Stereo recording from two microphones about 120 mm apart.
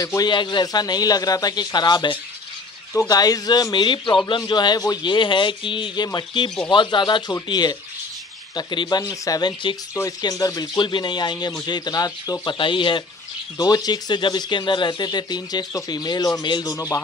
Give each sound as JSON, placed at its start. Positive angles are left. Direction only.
{"t": 0.0, "sound": "a man's voice", "side_deg": 30}
{"t": 0.3, "sound": "a man's voice", "side_deg": 40}